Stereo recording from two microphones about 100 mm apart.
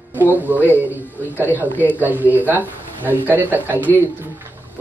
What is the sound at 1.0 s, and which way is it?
Speech, 20° left (ahead or behind).